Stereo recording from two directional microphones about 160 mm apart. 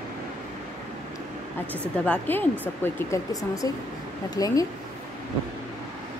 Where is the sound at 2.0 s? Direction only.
10° left (ahead or behind).